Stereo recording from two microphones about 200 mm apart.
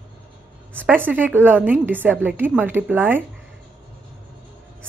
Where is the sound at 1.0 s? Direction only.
10° right (ahead or behind).